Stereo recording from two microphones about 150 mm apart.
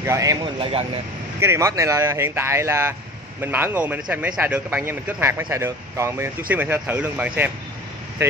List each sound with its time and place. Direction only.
0.0 s a man's voice: 20° right (ahead or behind)
0.6 s speech: 35° right (ahead or behind)
1.4 s speech: 20° right (ahead or behind)